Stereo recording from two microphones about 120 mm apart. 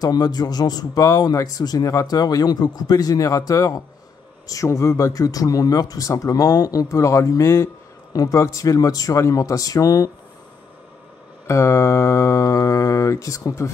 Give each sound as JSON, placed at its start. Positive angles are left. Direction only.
{"t": 0.0, "sound": "speech", "side_deg": 35}
{"t": 11.4, "sound": "speech", "side_deg": 25}